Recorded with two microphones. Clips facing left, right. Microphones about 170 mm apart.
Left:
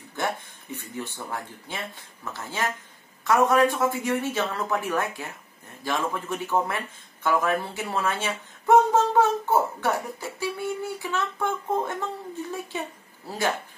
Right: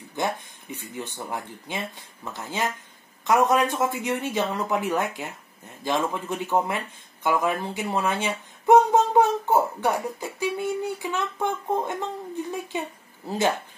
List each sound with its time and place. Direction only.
0.1 s speech: 15° right (ahead or behind)
3.3 s speech: 20° right (ahead or behind)